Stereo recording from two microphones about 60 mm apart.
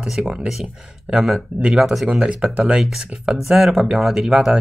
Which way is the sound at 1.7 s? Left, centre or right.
Centre.